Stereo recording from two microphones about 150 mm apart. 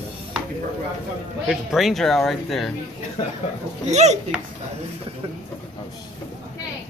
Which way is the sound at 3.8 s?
50° right (ahead or behind).